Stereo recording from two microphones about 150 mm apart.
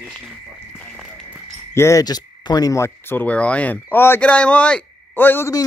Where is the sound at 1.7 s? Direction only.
20° left (ahead or behind).